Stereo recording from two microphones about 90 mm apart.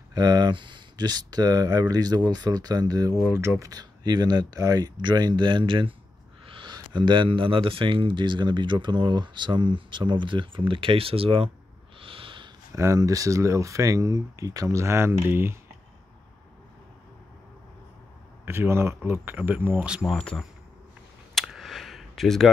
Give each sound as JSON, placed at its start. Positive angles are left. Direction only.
{"t": 0.1, "sound": "speech", "side_deg": -50}
{"t": 3.2, "sound": "speech", "side_deg": -30}
{"t": 4.0, "sound": "speech", "side_deg": -55}
{"t": 12.0, "sound": "snort", "side_deg": -80}
{"t": 12.7, "sound": "speech", "side_deg": -35}
{"t": 18.4, "sound": "speech", "side_deg": -25}
{"t": 20.1, "sound": "speech", "side_deg": 5}
{"t": 21.4, "sound": "a sound", "side_deg": 0}